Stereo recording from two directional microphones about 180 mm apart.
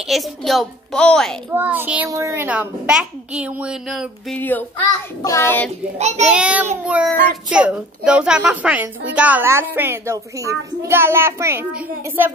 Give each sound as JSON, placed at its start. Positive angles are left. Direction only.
{"t": 0.0, "sound": "a child's voice", "side_deg": 0}
{"t": 1.5, "sound": "a woman's voice", "side_deg": -10}
{"t": 4.4, "sound": "child singing", "side_deg": 10}
{"t": 5.9, "sound": "a child's voice", "side_deg": -40}
{"t": 6.2, "sound": "a woman's voice", "side_deg": -5}